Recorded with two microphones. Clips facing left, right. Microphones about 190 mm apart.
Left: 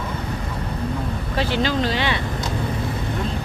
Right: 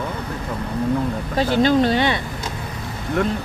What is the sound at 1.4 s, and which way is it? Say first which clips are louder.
Speech: right 6 dB; 50° right (ahead or behind).